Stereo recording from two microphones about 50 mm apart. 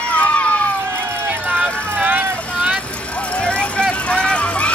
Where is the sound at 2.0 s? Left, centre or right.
Right.